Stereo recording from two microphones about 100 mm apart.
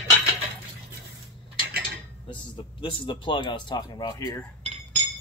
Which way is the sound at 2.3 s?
55° left (ahead or behind).